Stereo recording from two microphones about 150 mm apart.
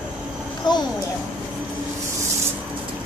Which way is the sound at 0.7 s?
30° left (ahead or behind).